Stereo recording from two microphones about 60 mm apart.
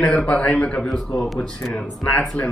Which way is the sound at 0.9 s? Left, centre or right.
Centre.